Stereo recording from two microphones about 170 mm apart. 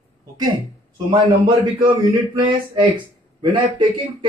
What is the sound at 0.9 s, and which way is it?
A man's voice, 30° right (ahead or behind).